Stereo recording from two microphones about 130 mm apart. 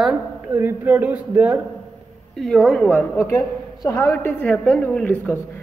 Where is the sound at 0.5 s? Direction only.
15° right (ahead or behind).